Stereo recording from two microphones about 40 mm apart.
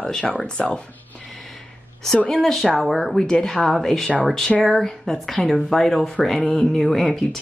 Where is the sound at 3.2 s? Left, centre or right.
Centre.